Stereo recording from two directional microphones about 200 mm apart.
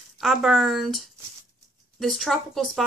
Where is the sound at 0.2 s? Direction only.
Centre (ahead or behind).